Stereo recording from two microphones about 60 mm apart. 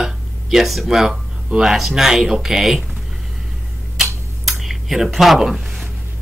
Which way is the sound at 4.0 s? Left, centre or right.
Centre.